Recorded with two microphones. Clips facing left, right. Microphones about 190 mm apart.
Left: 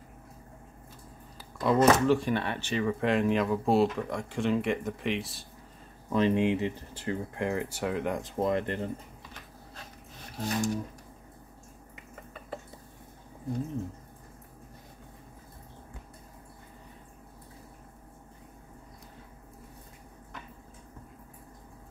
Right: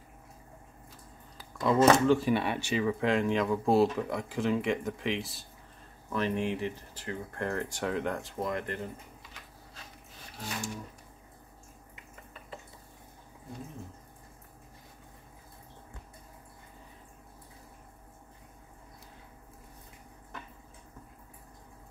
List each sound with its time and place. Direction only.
1.4 s a sound: centre (ahead or behind)
2.0 s speech: 5° right (ahead or behind)
6.1 s speech: 20° left (ahead or behind)
7.3 s speech: 15° left (ahead or behind)
8.2 s speech: 20° left (ahead or behind)
10.4 s speech: 40° left (ahead or behind)